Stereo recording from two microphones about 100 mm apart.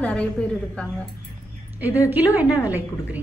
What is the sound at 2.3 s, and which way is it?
Speech, 35° left (ahead or behind).